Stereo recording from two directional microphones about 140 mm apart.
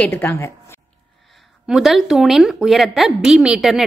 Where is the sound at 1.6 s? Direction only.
5° right (ahead or behind).